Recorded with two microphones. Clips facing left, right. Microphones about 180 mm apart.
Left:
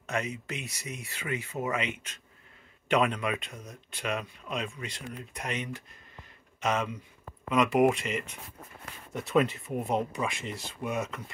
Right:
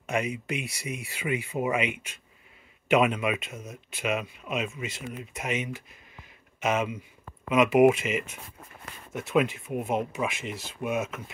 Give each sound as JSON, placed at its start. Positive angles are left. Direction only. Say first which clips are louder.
{"t": 0.0, "sound": "speech", "louder": "right 4 dB", "side_deg": -10}
{"t": 10.8, "sound": "speech", "louder": "right 3 dB", "side_deg": -20}